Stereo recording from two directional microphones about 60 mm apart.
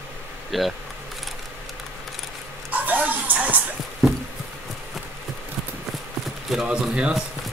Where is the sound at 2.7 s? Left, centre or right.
Right.